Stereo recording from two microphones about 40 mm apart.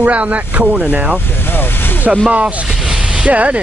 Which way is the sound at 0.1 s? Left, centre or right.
Right.